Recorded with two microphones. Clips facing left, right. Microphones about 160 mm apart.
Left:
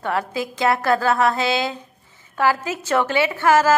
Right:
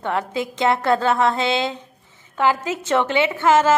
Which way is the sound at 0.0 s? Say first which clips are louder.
Even; 20° right (ahead or behind).